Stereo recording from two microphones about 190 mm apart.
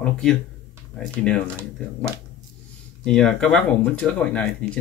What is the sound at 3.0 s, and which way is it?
Speech, 5° left (ahead or behind).